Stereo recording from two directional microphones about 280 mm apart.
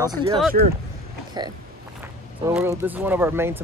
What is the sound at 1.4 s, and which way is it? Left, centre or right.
Speech, centre.